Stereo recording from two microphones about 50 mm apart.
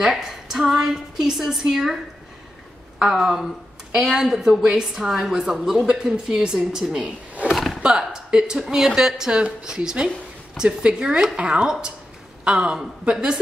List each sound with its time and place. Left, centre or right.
0.0 s a woman's voice: centre
3.0 s a woman's voice: centre
7.5 s a sound: centre
8.0 s a woman's voice: centre
10.0 s a sound: centre
10.8 s a woman's voice: right